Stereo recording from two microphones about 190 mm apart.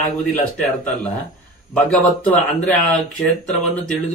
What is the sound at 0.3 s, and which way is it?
Speech, 10° left (ahead or behind).